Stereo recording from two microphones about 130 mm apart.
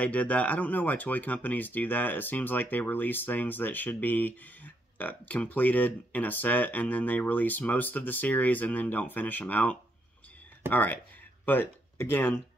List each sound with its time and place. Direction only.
0.0 s speech: 10° left (ahead or behind)